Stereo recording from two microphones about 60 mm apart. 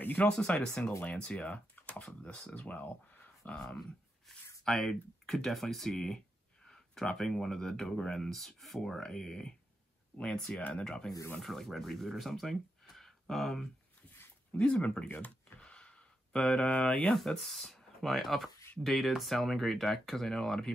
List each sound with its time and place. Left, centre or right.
0.0 s speech: left
0.3 s speech: centre
3.5 s speech: centre
4.6 s speech: centre
5.9 s speech: centre
14.6 s speech: centre
15.0 s a sound: left
15.6 s a sound: centre
16.3 s speech: centre
17.1 s speech: centre